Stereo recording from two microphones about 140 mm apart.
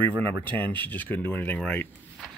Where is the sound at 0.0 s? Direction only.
15° left (ahead or behind).